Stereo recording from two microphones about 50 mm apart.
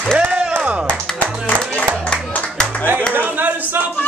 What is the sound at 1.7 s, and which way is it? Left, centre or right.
Music, centre.